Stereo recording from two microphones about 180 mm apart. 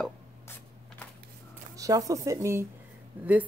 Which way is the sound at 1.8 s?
20° right (ahead or behind).